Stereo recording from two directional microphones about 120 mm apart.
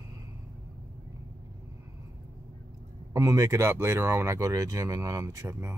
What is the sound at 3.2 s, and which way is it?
Speech, 25° right (ahead or behind).